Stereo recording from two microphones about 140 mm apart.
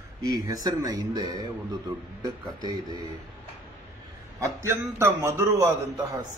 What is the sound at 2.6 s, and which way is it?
Speech, 30° right (ahead or behind).